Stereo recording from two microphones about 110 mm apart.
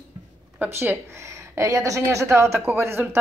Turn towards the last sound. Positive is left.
turn(degrees=-20)  # may be behind; listen again after turning